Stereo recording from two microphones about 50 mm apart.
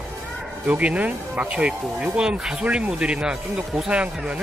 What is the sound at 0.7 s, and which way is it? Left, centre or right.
Speech, right.